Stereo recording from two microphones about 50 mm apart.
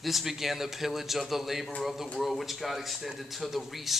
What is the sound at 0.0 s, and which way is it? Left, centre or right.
A man's voice, centre.